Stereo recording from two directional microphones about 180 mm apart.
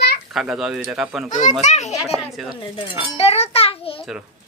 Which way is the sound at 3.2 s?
35° left (ahead or behind).